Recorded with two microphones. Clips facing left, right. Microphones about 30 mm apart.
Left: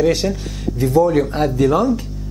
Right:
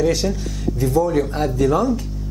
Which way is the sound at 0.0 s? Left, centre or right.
Centre.